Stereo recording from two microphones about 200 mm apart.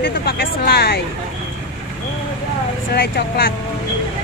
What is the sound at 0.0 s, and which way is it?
Speech, 50° left (ahead or behind).